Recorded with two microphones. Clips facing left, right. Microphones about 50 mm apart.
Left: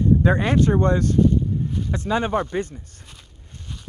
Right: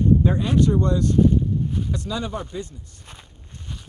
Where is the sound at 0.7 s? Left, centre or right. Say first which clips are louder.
Left 1 dB; left.